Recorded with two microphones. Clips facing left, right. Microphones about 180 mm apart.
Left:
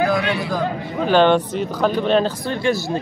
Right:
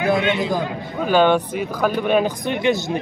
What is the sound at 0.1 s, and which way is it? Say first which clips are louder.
Speech: right 2 dB; 20° right (ahead or behind).